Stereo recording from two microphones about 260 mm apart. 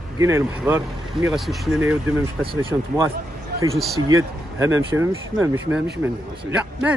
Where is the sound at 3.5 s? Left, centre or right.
Right.